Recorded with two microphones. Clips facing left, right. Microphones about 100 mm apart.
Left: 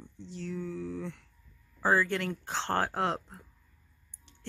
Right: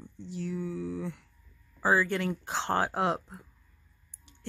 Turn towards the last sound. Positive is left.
turn(degrees=-10)  # may be behind; listen again after turning